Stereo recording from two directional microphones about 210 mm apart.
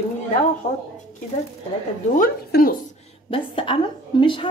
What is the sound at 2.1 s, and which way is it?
Speech, 45° left (ahead or behind).